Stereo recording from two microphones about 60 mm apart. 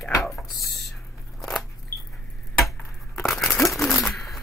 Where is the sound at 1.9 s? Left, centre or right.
Left.